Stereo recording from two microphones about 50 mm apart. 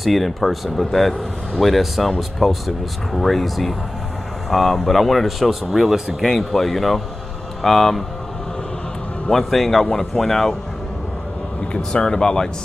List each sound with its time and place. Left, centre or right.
0.0 s speech: centre
9.3 s speech: centre
11.6 s speech: centre